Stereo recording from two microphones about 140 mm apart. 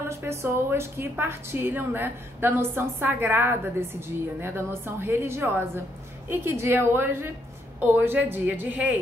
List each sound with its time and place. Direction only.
0.1 s a woman's voice: 20° right (ahead or behind)